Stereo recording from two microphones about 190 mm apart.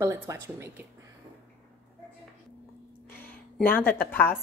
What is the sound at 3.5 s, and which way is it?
Speech, 10° left (ahead or behind).